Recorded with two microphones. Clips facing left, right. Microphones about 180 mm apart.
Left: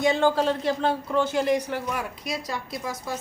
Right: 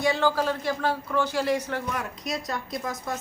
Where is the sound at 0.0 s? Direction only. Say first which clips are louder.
Left 3 dB; 20° left (ahead or behind).